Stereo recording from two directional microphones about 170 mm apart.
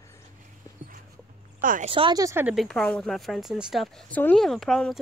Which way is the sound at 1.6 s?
55° right (ahead or behind).